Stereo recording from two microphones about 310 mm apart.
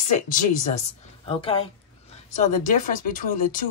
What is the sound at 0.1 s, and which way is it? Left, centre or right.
Speech, left.